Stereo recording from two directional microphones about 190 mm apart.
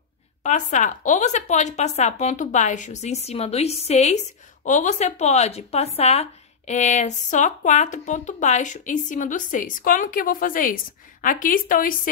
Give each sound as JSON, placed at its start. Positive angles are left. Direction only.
{"t": 0.4, "sound": "speech", "side_deg": 40}